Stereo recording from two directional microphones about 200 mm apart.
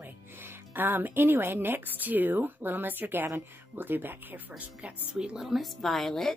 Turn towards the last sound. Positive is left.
turn(degrees=0)  # may be behind; listen again after turning